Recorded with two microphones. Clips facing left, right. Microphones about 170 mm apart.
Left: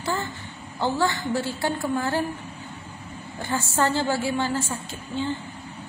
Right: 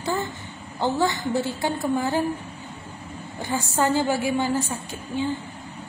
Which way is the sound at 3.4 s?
15° right (ahead or behind).